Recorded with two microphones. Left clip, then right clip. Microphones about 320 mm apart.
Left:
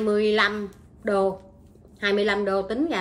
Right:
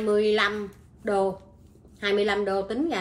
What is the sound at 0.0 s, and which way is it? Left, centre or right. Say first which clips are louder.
Speech: left 1 dB; centre.